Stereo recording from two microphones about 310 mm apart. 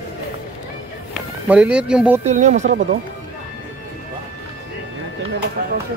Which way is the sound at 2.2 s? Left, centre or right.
Right.